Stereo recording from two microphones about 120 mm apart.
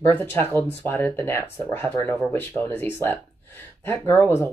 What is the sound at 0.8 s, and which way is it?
Speech, 20° left (ahead or behind).